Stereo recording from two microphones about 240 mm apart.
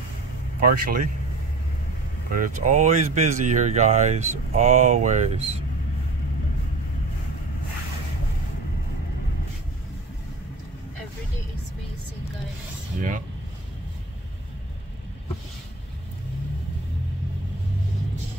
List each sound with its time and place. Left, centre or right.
0.6 s speech: right
2.3 s speech: right